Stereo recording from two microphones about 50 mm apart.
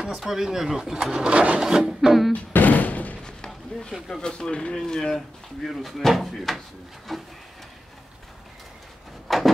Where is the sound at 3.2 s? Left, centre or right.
Centre.